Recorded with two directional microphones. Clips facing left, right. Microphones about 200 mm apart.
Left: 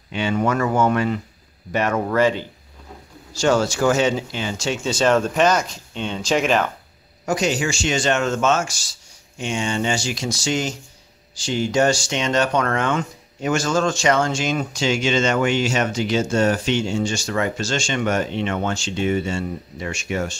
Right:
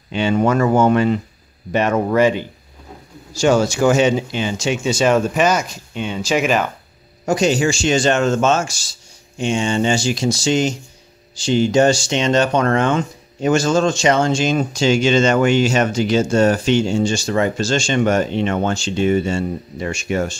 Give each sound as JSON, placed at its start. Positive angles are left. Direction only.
{"t": 0.1, "sound": "speech", "side_deg": -30}
{"t": 7.2, "sound": "speech", "side_deg": -30}